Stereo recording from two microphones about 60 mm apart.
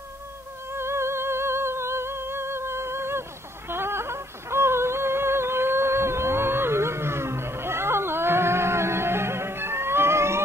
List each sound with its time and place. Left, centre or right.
0.7 s music: right